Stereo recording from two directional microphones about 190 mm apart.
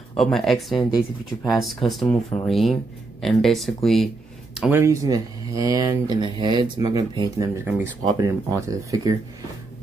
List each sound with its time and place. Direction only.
0.1 s speech: centre (ahead or behind)
4.6 s speech: 10° right (ahead or behind)